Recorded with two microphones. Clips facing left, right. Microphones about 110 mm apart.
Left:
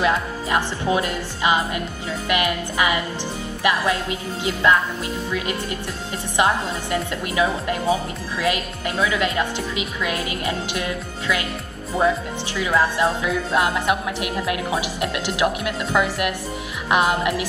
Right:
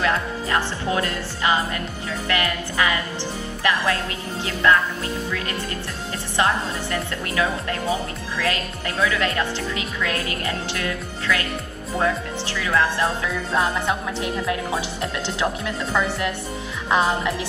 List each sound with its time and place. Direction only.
0.0 s a woman's voice: 20° left (ahead or behind)
12.5 s a woman's voice: 20° left (ahead or behind)